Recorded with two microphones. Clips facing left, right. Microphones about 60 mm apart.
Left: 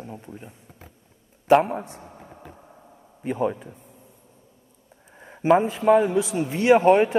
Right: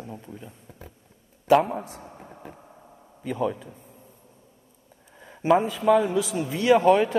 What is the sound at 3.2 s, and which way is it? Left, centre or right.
Speech, left.